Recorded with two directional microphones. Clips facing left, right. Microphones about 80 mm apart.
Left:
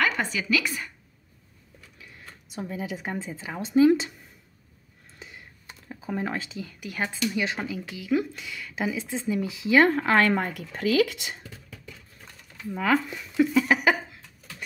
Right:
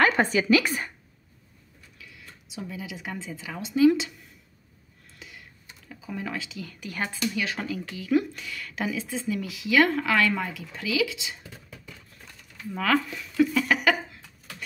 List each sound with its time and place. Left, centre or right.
0.0 s a woman's voice: right
2.0 s speech: left
5.9 s speech: left
6.6 s speech: centre
7.3 s speech: left
12.7 s speech: centre